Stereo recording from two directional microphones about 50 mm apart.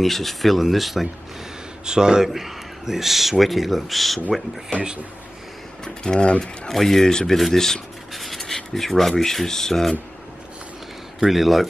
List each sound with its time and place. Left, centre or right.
0.0 s a man's voice: centre
1.9 s a man's voice: centre
6.0 s speech: centre
6.7 s speech: centre
8.1 s writing: centre
9.1 s speech: centre
11.1 s a man's voice: centre